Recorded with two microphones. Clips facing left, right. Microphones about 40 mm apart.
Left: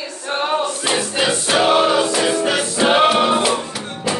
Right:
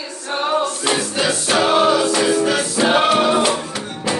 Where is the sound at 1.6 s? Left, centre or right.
Left.